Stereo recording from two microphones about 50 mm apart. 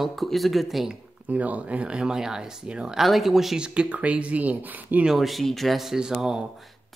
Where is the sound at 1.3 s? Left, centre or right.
Right; by 3.6 s centre.